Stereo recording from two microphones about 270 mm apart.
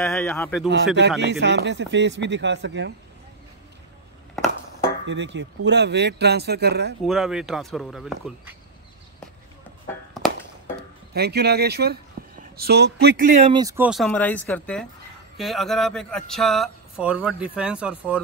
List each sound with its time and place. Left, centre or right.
0.0 s speech: centre
1.2 s speech: right
5.0 s speech: right
7.0 s speech: centre
10.2 s a sound: centre
11.1 s speech: right
13.5 s speech: centre